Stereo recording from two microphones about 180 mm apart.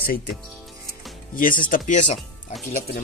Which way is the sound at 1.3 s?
50° left (ahead or behind).